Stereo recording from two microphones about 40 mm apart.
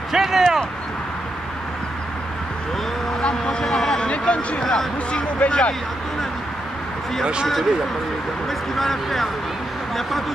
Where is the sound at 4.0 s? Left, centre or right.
Left.